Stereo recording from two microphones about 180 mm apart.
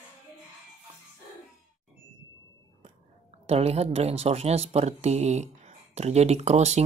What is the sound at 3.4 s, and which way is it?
Speech, 35° right (ahead or behind).